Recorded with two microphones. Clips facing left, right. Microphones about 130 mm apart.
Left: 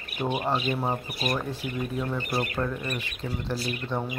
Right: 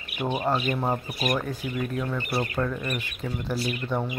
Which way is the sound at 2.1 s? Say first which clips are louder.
Right 1 dB; 20° left (ahead or behind).